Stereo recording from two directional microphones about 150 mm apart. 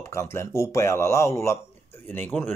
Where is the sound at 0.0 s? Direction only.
20° left (ahead or behind).